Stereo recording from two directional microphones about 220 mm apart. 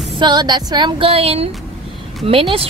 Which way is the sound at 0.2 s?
20° right (ahead or behind).